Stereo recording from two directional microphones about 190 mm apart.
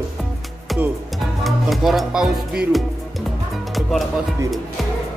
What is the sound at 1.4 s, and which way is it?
Speech, centre (ahead or behind).